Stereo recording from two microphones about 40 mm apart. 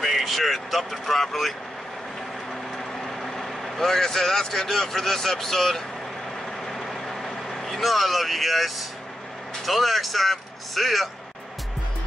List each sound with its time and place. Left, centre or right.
0.0 s speech: centre
3.0 s speech: centre
6.7 s vehicle: centre
9.7 s speech: centre